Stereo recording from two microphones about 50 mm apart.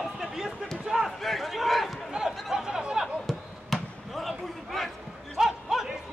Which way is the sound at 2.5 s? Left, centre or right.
Centre.